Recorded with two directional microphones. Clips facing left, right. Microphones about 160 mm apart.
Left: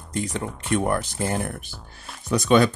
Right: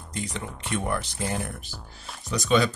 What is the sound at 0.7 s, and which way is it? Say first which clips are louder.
Speech: left 5 dB; 50° left (ahead or behind).